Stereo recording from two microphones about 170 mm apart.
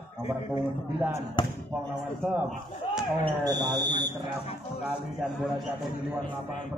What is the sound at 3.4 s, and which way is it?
Speech, 25° right (ahead or behind).